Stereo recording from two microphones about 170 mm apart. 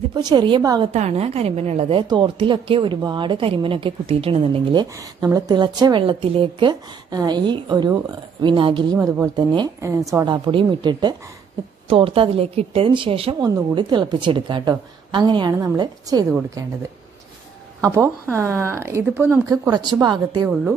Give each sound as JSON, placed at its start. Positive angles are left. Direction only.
{"t": 0.1, "sound": "a woman's voice", "side_deg": -25}
{"t": 0.9, "sound": "a woman's voice", "side_deg": -40}
{"t": 4.9, "sound": "a woman's voice", "side_deg": -20}
{"t": 8.9, "sound": "a woman's voice", "side_deg": -15}
{"t": 17.8, "sound": "speech", "side_deg": -15}
{"t": 19.7, "sound": "a woman's voice", "side_deg": -25}